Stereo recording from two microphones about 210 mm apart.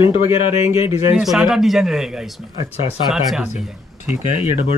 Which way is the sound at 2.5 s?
30° left (ahead or behind).